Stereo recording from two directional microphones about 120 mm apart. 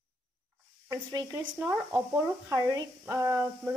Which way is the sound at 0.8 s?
30° right (ahead or behind).